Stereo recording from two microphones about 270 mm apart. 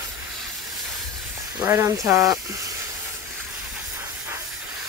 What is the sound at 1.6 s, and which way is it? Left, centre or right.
Speech, centre.